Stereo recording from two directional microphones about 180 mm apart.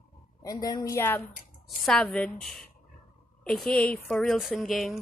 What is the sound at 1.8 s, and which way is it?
Speech, centre (ahead or behind).